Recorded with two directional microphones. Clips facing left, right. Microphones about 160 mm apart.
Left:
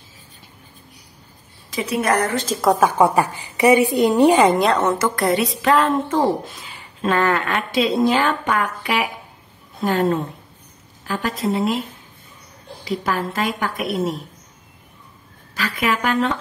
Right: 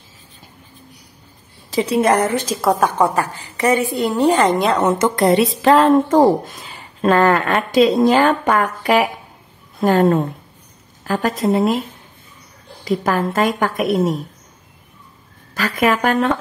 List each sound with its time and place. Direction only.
1.7 s a woman's voice: 30° right (ahead or behind)
2.5 s a woman's voice: centre (ahead or behind)
3.0 s a woman's voice: 15° left (ahead or behind)
4.7 s a woman's voice: 20° right (ahead or behind)
5.6 s speech: 35° right (ahead or behind)
12.8 s speech: 45° right (ahead or behind)
15.5 s speech: 45° right (ahead or behind)